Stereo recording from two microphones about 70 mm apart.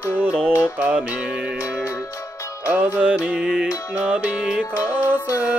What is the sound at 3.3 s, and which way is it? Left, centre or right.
Music, centre.